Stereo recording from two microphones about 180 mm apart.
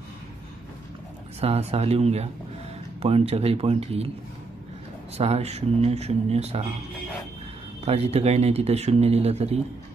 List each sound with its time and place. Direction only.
1.4 s speech: 35° right (ahead or behind)
5.1 s speech: 35° right (ahead or behind)
7.8 s speech: 35° right (ahead or behind)